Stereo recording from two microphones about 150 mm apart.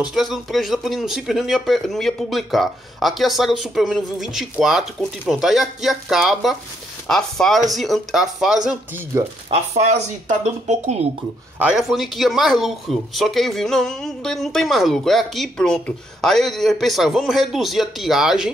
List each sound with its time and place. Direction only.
0.0 s speech: centre (ahead or behind)
9.5 s speech: 50° right (ahead or behind)
11.5 s speech: 5° right (ahead or behind)